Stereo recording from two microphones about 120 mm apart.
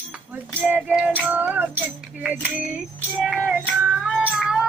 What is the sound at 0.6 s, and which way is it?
Music, 15° right (ahead or behind).